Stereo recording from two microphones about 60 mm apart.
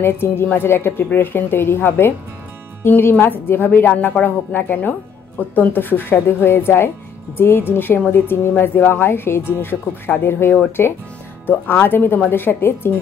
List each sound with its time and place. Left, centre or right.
0.0 s a woman's voice: left